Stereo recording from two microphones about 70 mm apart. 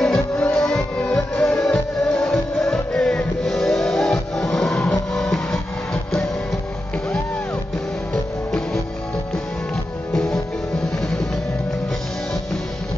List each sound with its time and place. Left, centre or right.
0.0 s music: centre
8.1 s music: centre
10.1 s music: centre